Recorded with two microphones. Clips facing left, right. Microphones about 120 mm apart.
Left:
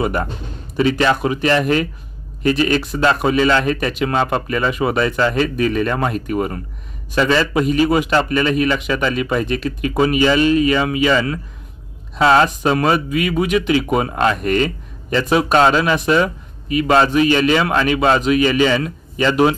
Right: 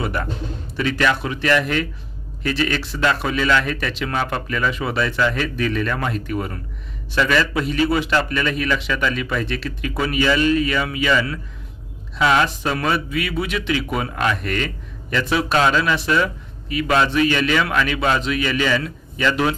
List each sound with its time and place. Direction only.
0.7 s speech: 25° left (ahead or behind)
5.6 s a man's voice: 15° left (ahead or behind)
5.9 s speech: 25° left (ahead or behind)
6.2 s a man's voice: 15° left (ahead or behind)
7.2 s a man's voice: 25° left (ahead or behind)
13.1 s speech: 20° left (ahead or behind)
13.7 s speech: 30° left (ahead or behind)